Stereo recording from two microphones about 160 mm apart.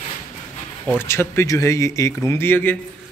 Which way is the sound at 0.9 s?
15° left (ahead or behind).